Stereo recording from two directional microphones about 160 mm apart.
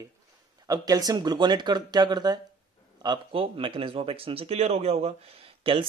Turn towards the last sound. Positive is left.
turn(degrees=-35)  # may be behind; listen again after turning